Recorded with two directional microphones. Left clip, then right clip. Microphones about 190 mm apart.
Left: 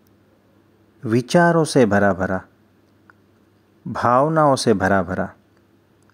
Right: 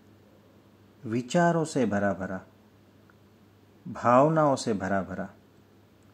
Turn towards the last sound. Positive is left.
turn(degrees=40)  # may be behind; listen again after turning